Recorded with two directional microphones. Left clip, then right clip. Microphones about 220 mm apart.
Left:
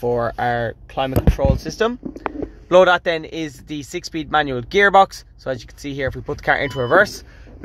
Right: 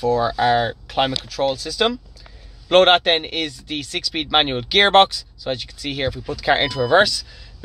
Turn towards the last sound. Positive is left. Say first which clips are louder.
# even
turn(degrees=10)  # may be behind; listen again after turning